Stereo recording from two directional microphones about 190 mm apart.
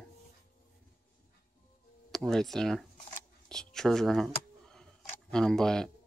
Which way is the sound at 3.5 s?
5° left (ahead or behind).